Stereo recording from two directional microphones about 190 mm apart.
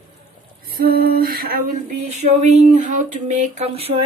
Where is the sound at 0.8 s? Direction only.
50° right (ahead or behind).